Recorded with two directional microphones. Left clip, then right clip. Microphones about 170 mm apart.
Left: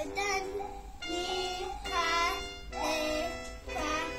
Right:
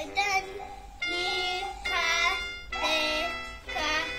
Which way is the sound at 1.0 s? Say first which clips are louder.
Right 5 dB; 45° left (ahead or behind).